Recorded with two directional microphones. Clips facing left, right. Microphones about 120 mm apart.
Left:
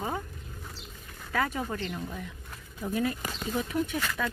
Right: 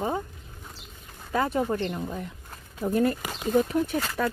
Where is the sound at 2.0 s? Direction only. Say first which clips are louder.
Right 4 dB; 45° right (ahead or behind).